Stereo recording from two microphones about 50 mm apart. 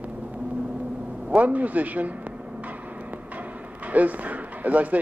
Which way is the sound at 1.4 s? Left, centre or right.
Right.